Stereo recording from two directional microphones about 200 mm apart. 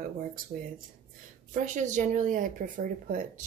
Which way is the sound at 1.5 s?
40° right (ahead or behind).